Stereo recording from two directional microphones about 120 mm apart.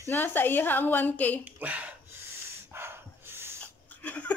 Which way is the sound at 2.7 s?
20° right (ahead or behind).